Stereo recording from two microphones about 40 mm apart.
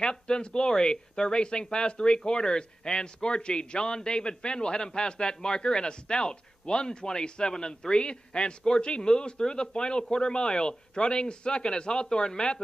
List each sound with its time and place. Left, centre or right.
0.0 s speech: left